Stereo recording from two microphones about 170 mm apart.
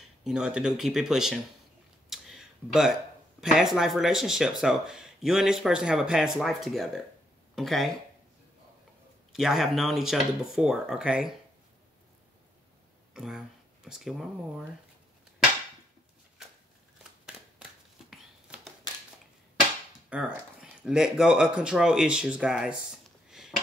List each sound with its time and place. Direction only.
0.2 s speech: 5° right (ahead or behind)
9.3 s speech: centre (ahead or behind)
13.1 s speech: 5° right (ahead or behind)
18.1 s a sound: centre (ahead or behind)
20.1 s speech: 5° right (ahead or behind)